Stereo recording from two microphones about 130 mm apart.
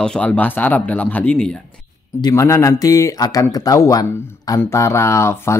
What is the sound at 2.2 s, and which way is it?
Speech, 25° left (ahead or behind).